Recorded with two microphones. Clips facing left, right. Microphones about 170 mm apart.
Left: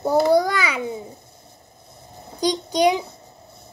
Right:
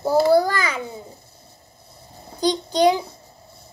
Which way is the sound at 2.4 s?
10° left (ahead or behind).